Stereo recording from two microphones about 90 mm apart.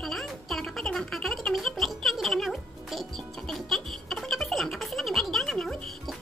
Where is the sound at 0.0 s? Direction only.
5° left (ahead or behind).